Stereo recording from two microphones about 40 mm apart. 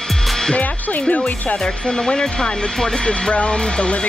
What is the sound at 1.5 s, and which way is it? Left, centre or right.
Speech, centre.